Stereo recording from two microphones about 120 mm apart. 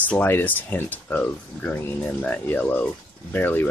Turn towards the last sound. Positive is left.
turn(degrees=15)  # may be behind; listen again after turning